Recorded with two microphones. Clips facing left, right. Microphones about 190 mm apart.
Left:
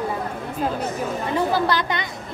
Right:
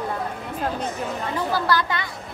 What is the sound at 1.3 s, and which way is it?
Speech, 20° left (ahead or behind).